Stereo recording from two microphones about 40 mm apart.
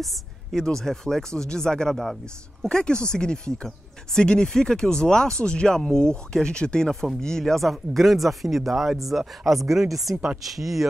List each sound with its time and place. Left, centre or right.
0.0 s a woman's voice: centre
0.7 s speech: centre
6.9 s speech: centre